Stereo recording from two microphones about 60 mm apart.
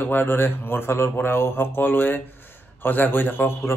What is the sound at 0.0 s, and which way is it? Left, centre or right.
A man's voice, left.